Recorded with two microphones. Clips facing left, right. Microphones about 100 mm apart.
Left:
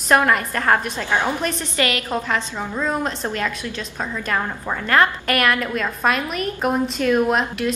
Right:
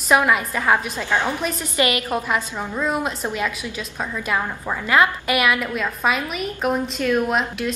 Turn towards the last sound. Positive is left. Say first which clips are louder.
# left 2 dB
turn(degrees=0)  # may be behind; listen again after turning